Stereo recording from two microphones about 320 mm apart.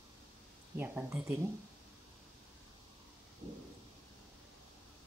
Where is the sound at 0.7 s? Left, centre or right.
Centre.